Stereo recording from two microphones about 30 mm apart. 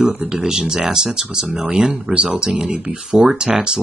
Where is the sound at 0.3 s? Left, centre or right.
Centre.